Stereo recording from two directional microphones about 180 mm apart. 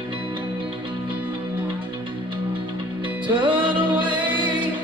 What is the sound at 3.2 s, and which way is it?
Music, 25° right (ahead or behind).